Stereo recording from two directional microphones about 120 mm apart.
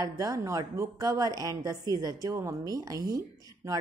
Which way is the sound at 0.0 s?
25° right (ahead or behind).